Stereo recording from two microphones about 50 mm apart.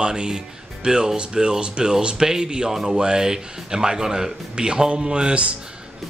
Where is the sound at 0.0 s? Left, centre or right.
Centre.